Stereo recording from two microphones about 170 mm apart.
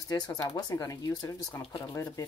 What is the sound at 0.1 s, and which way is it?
Speech, 20° left (ahead or behind).